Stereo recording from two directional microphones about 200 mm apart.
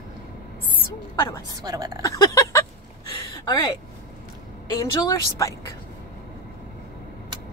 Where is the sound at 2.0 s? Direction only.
15° left (ahead or behind).